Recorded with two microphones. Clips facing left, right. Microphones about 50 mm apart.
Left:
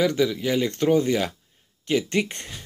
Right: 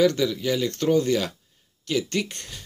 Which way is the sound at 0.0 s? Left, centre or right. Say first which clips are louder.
Right 1 dB; centre.